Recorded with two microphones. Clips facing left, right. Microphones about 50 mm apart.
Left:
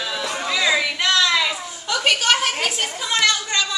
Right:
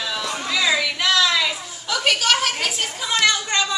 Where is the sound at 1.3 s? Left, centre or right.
Centre.